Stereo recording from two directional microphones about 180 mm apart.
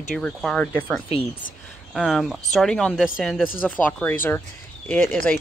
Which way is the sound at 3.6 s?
10° left (ahead or behind).